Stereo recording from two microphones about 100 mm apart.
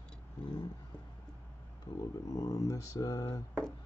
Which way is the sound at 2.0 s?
35° left (ahead or behind).